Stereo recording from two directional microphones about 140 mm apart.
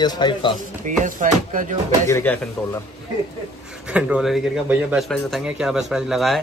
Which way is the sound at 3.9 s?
5° right (ahead or behind).